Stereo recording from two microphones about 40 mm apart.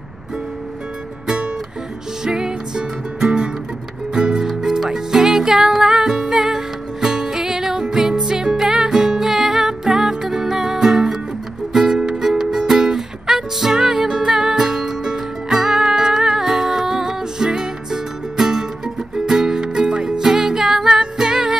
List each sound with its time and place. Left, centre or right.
2.2 s music: centre